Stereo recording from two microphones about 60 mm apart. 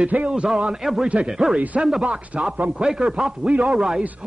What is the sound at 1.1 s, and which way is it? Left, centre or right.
Speech, centre.